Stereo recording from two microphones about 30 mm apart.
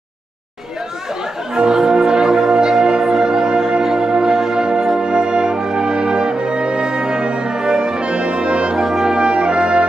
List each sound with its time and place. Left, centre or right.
1.6 s music: right
8.7 s brass instrument: centre
9.1 s brass instrument: right